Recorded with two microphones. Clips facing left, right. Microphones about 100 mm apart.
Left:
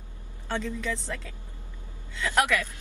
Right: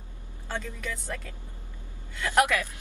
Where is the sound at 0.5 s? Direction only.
10° right (ahead or behind).